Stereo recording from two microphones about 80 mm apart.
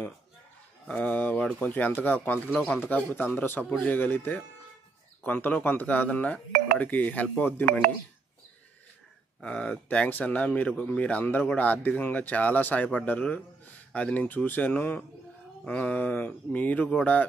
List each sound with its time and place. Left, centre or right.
0.8 s speech: centre
9.4 s speech: centre